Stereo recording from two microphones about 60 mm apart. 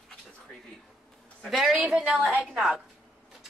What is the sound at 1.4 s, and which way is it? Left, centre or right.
A woman's voice, centre.